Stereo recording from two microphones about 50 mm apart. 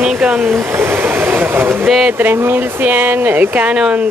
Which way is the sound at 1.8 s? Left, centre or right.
Centre.